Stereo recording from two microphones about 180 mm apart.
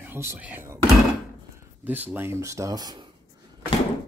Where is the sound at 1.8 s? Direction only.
10° right (ahead or behind).